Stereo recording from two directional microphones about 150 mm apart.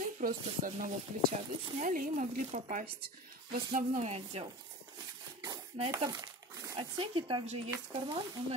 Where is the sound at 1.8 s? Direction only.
60° right (ahead or behind).